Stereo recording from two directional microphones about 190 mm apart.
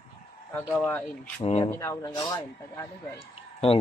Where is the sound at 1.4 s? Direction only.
30° left (ahead or behind).